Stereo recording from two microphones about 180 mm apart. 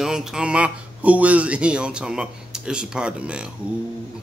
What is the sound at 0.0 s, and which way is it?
Speech, 5° right (ahead or behind).